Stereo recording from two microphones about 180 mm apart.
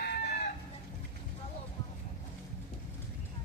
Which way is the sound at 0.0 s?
65° left (ahead or behind).